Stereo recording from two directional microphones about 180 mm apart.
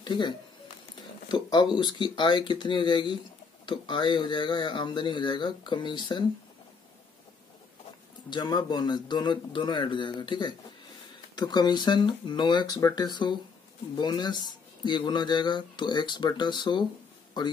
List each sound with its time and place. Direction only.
0.0 s speech: 25° left (ahead or behind)
1.3 s speech: 25° left (ahead or behind)
8.3 s speech: 25° left (ahead or behind)